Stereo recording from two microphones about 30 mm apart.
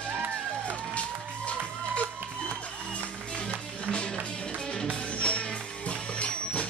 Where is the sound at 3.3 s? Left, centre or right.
Left.